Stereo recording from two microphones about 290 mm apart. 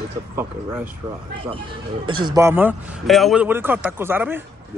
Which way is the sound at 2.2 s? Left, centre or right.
Centre.